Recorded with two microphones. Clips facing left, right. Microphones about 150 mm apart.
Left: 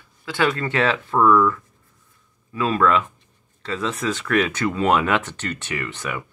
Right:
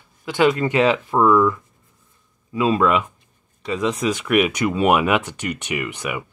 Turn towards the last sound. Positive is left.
turn(degrees=-15)  # may be behind; listen again after turning